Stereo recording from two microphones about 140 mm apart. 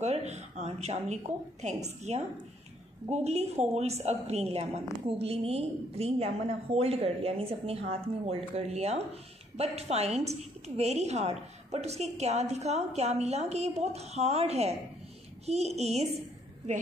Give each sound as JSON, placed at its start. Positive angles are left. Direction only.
{"t": 0.0, "sound": "a woman's voice", "side_deg": -50}